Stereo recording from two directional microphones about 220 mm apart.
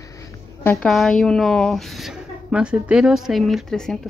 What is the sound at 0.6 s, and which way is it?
A woman's voice, centre (ahead or behind).